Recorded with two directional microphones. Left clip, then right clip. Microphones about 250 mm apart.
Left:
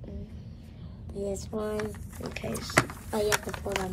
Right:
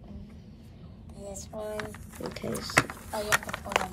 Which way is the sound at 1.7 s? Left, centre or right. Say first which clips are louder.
Left 3 dB; centre.